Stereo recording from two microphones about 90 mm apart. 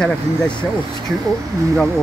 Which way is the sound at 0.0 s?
10° left (ahead or behind).